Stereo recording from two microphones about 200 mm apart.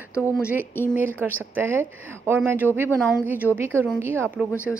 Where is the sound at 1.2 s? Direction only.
10° right (ahead or behind).